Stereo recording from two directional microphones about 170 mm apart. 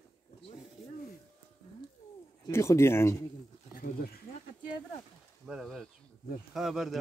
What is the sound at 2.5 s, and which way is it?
Speech, 15° left (ahead or behind).